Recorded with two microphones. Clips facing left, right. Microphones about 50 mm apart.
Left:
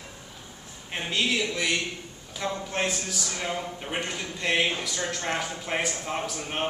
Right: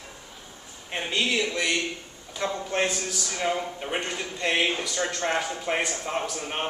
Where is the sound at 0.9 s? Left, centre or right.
Centre.